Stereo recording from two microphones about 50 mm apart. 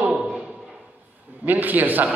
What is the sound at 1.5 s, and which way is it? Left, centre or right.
Speech, right.